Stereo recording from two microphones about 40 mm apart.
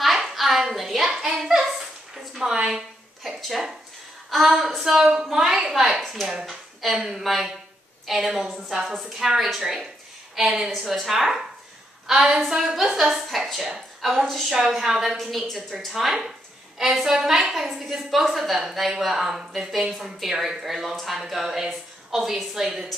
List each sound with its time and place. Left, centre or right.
0.0 s a sound: centre
2.5 s a woman's voice: centre
14.2 s a woman's voice: centre
14.5 s a woman's voice: centre